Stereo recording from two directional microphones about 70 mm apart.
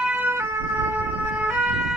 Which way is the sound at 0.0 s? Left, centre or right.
Right.